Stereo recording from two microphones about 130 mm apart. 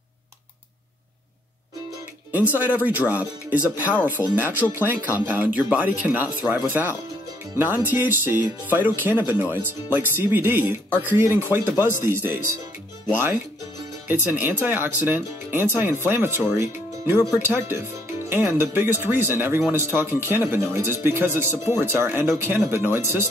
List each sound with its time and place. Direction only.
2.3 s speech: 10° right (ahead or behind)
14.0 s speech: 15° right (ahead or behind)